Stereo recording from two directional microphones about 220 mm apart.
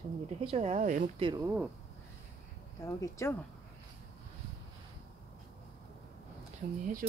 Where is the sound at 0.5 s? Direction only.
30° right (ahead or behind).